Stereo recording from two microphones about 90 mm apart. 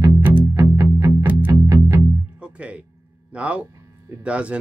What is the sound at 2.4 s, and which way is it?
Music, 15° right (ahead or behind).